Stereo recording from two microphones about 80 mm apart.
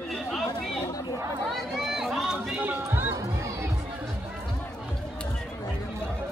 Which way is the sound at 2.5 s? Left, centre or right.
Right.